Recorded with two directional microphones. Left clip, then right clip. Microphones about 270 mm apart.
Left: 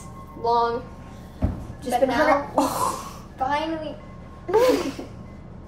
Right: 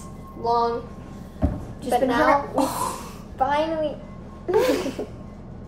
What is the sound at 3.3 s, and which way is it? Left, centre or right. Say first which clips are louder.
Speech: right 3 dB; centre.